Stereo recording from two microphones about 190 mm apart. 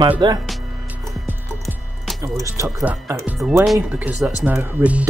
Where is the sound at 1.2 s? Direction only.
10° right (ahead or behind).